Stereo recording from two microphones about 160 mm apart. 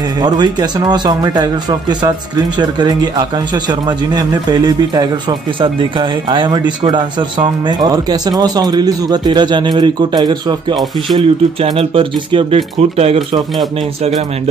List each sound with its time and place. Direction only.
0.2 s speech: 25° right (ahead or behind)